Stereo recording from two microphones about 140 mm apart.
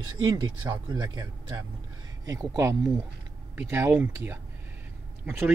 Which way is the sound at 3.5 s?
15° right (ahead or behind).